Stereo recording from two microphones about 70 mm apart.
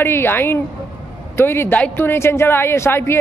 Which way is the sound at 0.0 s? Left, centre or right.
Left.